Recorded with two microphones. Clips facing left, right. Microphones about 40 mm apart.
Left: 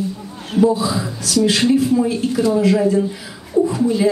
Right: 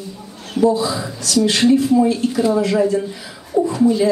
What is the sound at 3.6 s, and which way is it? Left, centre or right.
Speech, right.